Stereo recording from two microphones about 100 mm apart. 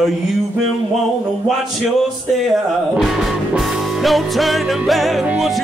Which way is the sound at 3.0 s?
Centre (ahead or behind).